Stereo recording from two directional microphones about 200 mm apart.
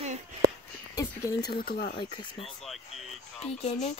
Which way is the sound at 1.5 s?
50° left (ahead or behind).